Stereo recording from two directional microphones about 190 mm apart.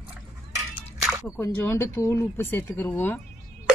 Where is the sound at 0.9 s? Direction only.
Centre (ahead or behind).